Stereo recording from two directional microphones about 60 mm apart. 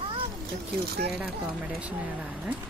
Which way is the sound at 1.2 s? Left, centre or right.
Right.